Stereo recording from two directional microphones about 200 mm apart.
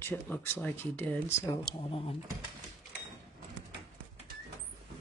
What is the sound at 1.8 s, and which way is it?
Speech, 25° left (ahead or behind).